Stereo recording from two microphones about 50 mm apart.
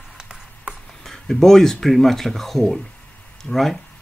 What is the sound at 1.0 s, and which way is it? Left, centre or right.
Speech, centre.